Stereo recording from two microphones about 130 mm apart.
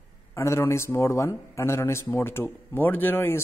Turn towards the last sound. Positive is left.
turn(degrees=20)  # may be behind; listen again after turning